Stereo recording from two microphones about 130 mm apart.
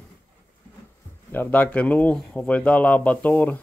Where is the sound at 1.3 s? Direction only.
15° left (ahead or behind).